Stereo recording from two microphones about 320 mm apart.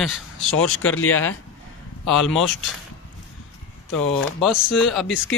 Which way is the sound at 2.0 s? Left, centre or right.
Centre.